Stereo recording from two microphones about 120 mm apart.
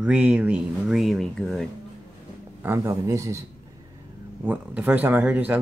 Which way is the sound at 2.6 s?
20° right (ahead or behind).